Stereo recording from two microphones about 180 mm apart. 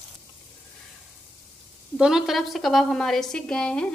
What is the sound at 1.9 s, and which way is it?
A woman's voice, 5° right (ahead or behind).